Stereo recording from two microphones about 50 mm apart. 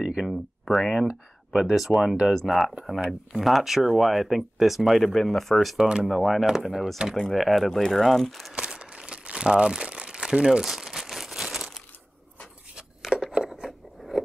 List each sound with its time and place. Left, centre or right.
0.2 s speech: centre
5.8 s speech: centre
6.0 s speech: centre
7.3 s speech: centre
8.5 s crumpling: centre
12.7 s a sound: centre